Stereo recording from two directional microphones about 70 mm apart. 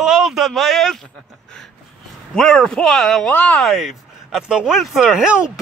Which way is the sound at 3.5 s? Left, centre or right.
Centre.